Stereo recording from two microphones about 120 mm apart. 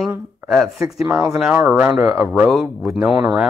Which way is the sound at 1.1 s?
Centre (ahead or behind).